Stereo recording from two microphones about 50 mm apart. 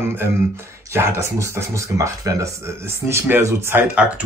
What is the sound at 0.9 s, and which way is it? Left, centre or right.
Speech, right.